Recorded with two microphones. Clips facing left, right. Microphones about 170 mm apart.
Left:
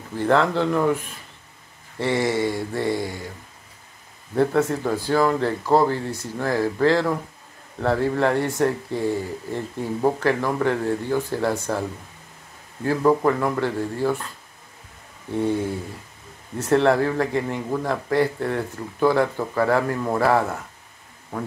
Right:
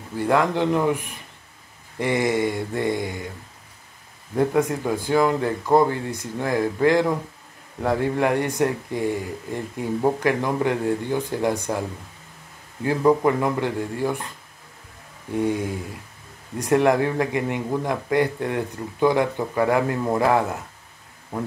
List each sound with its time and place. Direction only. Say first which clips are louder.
0.2 s speech: left 1 dB; 15° right (ahead or behind)
2.0 s mantra: even; 15° right (ahead or behind)
4.4 s speech: left 1 dB; 15° right (ahead or behind)
12.8 s speech: even; 15° right (ahead or behind)
15.3 s speech: even; 15° right (ahead or behind)